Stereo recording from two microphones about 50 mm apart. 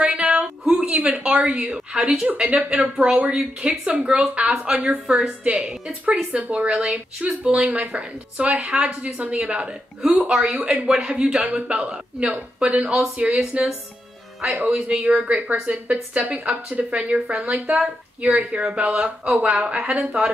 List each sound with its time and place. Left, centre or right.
0.0 s a sound: right
2.2 s speech: right
5.0 s a woman's voice: centre
6.0 s speech: right